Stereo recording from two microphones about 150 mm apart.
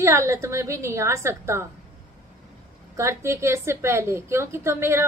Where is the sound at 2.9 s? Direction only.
20° right (ahead or behind).